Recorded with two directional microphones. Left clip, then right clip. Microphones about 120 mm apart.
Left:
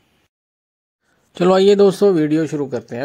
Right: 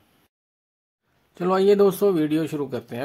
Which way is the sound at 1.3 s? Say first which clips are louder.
Left 6 dB; 50° left (ahead or behind).